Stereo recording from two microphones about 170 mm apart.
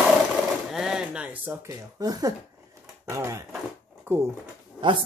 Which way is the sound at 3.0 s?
15° right (ahead or behind).